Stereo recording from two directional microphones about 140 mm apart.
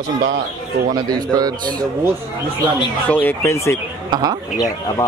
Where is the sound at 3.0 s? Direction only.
15° left (ahead or behind).